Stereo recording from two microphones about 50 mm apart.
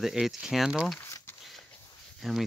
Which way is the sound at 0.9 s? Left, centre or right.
Left.